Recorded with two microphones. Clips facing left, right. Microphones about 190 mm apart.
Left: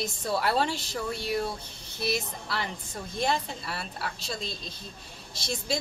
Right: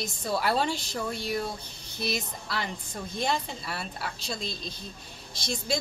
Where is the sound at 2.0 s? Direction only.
5° left (ahead or behind).